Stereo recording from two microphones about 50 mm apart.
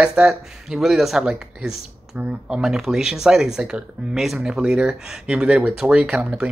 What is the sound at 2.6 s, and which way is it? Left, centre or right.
Speech, centre.